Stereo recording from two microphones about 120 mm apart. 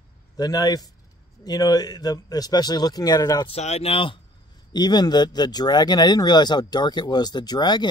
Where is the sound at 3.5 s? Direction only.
60° left (ahead or behind).